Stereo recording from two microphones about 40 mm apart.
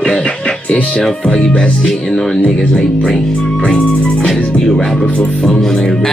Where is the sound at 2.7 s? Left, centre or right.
Centre.